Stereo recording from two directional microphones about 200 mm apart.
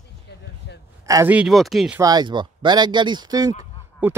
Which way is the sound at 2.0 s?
20° right (ahead or behind).